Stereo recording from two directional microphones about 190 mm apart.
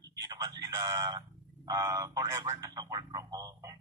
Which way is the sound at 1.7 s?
20° right (ahead or behind).